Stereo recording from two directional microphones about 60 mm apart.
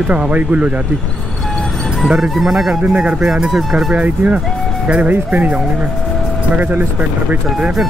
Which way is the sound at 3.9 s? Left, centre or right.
Right.